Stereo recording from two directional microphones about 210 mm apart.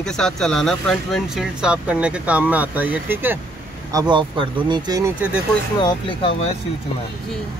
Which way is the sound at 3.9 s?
20° right (ahead or behind).